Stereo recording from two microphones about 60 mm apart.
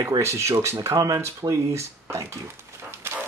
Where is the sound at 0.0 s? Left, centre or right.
Right.